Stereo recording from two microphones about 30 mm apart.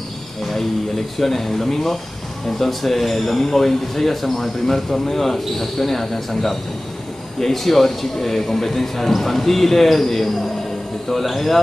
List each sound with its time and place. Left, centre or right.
1.2 s speech: centre